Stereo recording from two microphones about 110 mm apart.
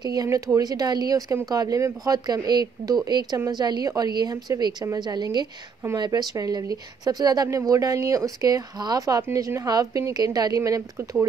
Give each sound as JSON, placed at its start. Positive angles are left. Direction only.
{"t": 0.0, "sound": "speech", "side_deg": -35}